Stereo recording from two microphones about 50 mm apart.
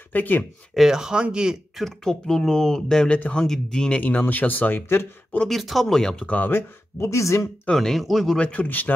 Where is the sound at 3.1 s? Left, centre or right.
Left.